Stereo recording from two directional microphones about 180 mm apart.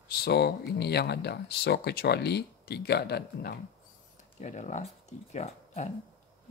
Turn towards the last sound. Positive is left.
turn(degrees=40)  # may be behind; listen again after turning